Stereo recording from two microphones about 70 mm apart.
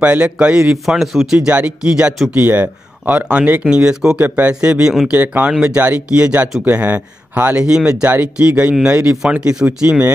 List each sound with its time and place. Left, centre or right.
0.0 s speech: centre
0.8 s speech: centre
2.3 s speech: right; by 4.2 s centre
4.2 s speech: right
5.1 s speech: right